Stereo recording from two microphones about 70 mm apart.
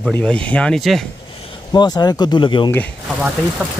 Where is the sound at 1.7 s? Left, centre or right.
Left.